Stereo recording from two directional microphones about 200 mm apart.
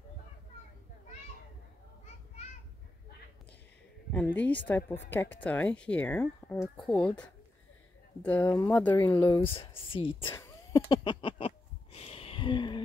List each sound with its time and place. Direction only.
4.1 s speech: 10° left (ahead or behind)
9.5 s speech: 25° left (ahead or behind)
10.3 s a sound: 15° left (ahead or behind)